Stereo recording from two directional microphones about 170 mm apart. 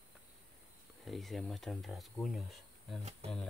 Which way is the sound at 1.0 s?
Centre (ahead or behind).